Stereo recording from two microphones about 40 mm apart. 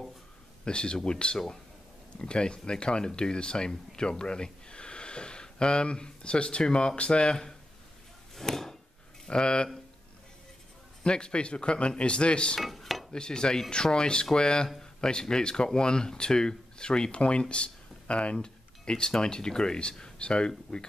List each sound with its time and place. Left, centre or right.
0.7 s speech: left
8.4 s a sound: centre
9.2 s speech: left
11.1 s speech: left
12.5 s cutlery: centre
13.1 s speech: left